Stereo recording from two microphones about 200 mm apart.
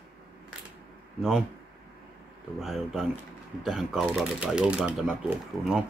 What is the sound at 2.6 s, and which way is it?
Speech, centre (ahead or behind).